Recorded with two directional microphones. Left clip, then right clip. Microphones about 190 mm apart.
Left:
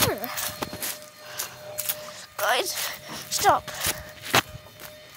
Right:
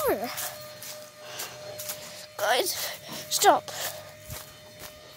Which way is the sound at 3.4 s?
25° right (ahead or behind).